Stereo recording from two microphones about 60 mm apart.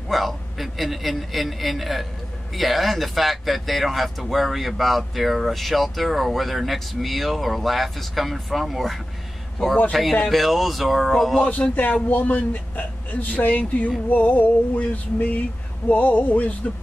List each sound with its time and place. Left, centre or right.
0.1 s speech: centre
11.4 s a man's voice: left